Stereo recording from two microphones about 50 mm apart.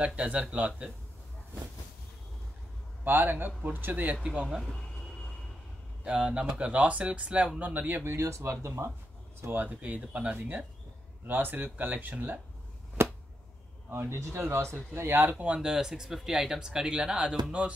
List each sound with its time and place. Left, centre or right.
0.0 s speech: centre
3.0 s speech: right
6.0 s speech: centre; by 8.0 s right
8.0 s speech: right
8.3 s speech: right
9.5 s speech: right
9.8 s speech: right
13.8 s speech: right
15.0 s speech: right
15.4 s speech: centre
15.7 s speech: centre